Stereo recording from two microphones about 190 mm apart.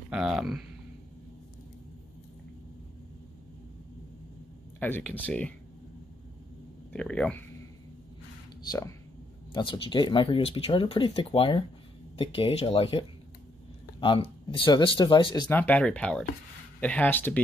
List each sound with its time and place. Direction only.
0.1 s speech: 5° right (ahead or behind)
4.7 s speech: 10° left (ahead or behind)
6.9 s speech: 5° left (ahead or behind)
9.5 s speech: 25° left (ahead or behind); by 17.4 s 10° left (ahead or behind)